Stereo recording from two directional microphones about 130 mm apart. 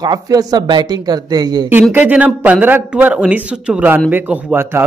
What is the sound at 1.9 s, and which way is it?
A man's voice, 10° right (ahead or behind).